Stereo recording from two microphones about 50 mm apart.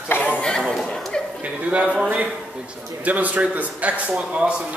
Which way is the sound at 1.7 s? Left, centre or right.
Right.